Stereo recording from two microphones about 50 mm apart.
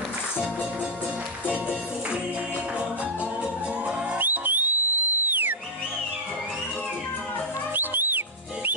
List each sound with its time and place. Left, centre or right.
4.2 s music: right
7.7 s music: right